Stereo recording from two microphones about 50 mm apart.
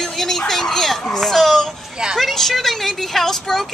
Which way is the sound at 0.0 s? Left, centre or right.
Centre.